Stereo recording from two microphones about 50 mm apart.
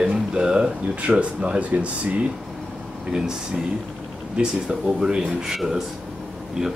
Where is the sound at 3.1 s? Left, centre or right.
Centre.